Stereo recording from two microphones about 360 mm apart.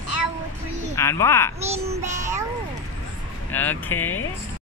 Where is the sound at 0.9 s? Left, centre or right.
Centre.